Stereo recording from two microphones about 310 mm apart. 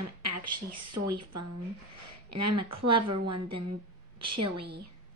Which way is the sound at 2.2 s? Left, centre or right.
Right.